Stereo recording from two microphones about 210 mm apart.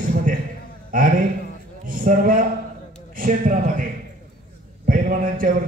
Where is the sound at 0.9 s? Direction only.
40° right (ahead or behind).